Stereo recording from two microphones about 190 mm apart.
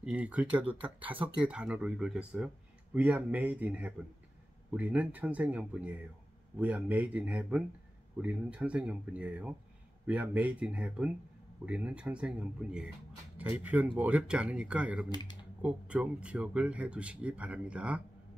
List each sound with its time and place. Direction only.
0.0 s speech: 5° right (ahead or behind)
15.0 s speech: 20° left (ahead or behind)
15.6 s speech: 5° right (ahead or behind)